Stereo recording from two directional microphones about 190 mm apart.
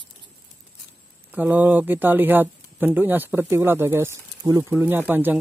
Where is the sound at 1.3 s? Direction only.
10° right (ahead or behind).